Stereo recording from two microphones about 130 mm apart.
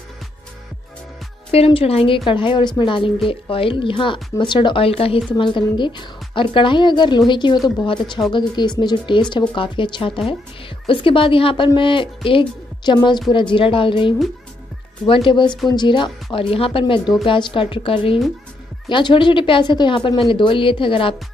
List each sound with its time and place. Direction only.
1.5 s a woman's voice: 50° left (ahead or behind)